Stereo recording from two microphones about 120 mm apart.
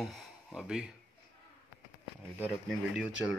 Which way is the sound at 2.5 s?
5° right (ahead or behind).